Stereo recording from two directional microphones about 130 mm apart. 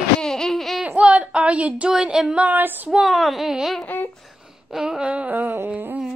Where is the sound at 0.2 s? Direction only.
5° left (ahead or behind); by 3.0 s 15° right (ahead or behind).